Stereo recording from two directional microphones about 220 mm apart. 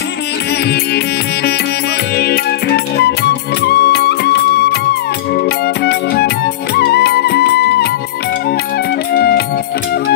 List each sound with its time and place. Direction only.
0.7 s music: 50° left (ahead or behind)
5.9 s music: 45° left (ahead or behind)
9.1 s music: 45° left (ahead or behind)